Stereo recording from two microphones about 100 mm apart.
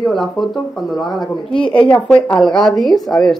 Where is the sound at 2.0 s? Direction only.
10° left (ahead or behind).